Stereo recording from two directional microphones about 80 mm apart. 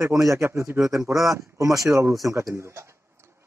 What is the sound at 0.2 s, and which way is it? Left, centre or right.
Speech, right.